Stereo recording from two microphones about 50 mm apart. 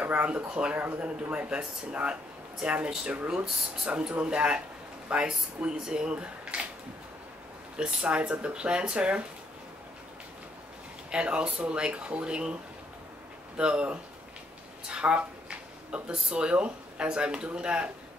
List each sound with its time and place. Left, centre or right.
0.0 s speech: right
0.3 s speech: right
0.7 s speech: right
1.5 s speech: centre
7.7 s speech: right
11.1 s speech: centre
13.6 s speech: right